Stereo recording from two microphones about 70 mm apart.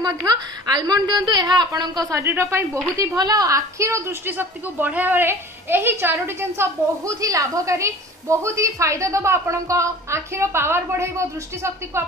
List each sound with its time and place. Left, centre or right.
0.0 s a woman's voice: right
1.8 s speech: right
2.2 s a woman's voice: right
3.2 s a woman's voice: right
3.4 s a woman's voice: right
7.2 s a woman's voice: right